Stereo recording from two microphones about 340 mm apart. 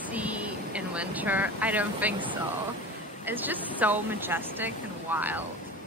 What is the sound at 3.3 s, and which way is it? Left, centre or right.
Speech, centre.